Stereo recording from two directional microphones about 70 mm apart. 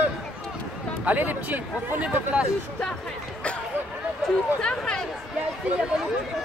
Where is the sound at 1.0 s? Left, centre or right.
Right.